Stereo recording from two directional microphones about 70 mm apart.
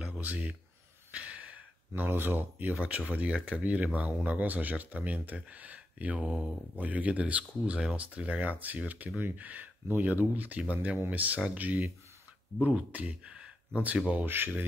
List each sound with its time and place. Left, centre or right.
0.2 s speech: right
1.1 s sigh: centre
2.0 s speech: right